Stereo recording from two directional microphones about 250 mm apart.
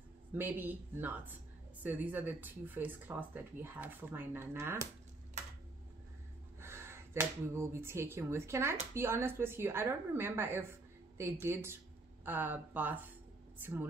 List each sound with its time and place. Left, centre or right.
0.3 s speech: centre
6.6 s speech: centre